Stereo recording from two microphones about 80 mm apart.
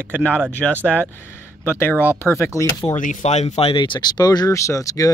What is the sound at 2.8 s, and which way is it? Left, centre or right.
Speech, left.